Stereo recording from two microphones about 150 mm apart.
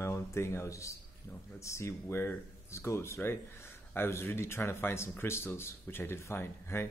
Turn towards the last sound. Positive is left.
turn(degrees=15)  # may be behind; listen again after turning